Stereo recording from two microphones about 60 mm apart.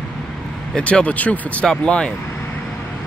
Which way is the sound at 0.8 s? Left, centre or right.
Left.